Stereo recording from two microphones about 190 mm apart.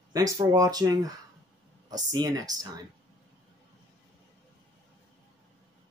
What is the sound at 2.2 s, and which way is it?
Speech, 20° right (ahead or behind).